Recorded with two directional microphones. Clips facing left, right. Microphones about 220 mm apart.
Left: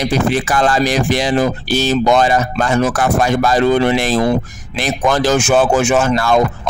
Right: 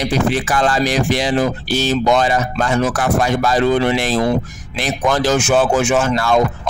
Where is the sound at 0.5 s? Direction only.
45° left (ahead or behind).